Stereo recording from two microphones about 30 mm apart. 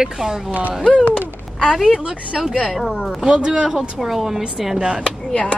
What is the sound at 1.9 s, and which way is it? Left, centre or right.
Speech, right.